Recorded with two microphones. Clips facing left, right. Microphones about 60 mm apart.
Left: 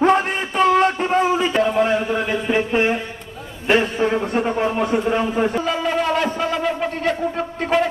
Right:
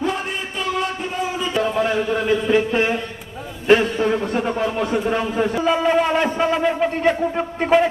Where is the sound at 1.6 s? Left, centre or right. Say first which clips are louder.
Right 1 dB; left.